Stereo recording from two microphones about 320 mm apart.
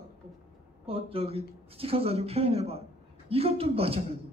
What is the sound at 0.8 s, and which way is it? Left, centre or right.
Speech, centre.